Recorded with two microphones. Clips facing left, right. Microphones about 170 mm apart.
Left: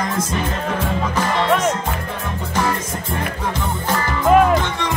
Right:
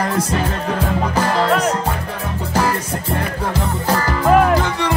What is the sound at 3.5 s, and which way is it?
Music, 35° right (ahead or behind).